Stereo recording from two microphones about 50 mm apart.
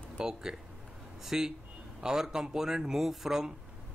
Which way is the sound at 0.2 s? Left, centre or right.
Centre.